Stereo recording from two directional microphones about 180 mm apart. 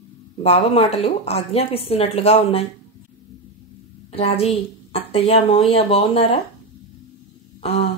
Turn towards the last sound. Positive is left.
turn(degrees=35)  # may be behind; listen again after turning